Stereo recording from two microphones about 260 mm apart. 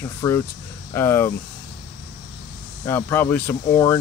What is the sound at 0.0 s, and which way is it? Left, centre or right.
Speech, centre.